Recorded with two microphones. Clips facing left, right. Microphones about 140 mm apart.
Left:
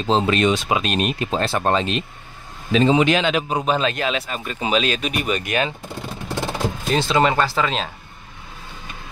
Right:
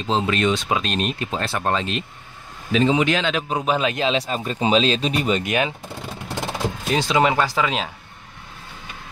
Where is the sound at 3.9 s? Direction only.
20° right (ahead or behind).